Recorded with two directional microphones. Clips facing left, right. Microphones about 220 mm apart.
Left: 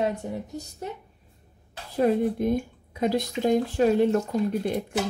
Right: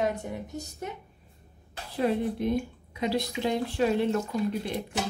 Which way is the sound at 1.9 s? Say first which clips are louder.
Left 4 dB; 45° left (ahead or behind).